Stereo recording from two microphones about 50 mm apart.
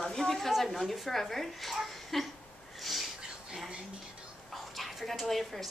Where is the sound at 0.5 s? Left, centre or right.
Centre.